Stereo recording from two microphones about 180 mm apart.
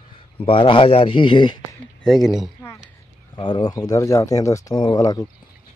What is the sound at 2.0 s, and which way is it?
Speech, centre (ahead or behind).